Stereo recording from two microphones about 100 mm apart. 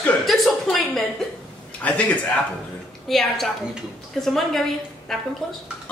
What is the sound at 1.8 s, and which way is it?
Speech, 15° left (ahead or behind).